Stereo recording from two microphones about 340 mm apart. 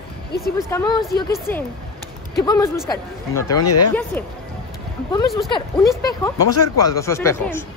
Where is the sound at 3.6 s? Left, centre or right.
Left.